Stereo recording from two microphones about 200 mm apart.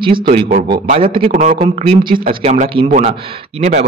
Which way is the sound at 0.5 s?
40° right (ahead or behind).